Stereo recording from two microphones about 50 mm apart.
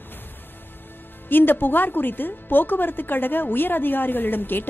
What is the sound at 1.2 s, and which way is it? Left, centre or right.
A woman's voice, left.